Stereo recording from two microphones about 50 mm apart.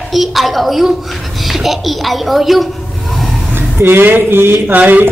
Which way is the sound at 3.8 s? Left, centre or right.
Right.